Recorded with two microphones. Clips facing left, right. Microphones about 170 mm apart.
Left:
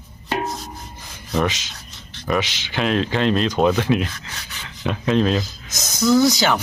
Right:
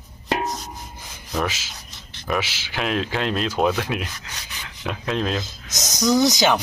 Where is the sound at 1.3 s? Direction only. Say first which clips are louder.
Left 4 dB; 5° right (ahead or behind).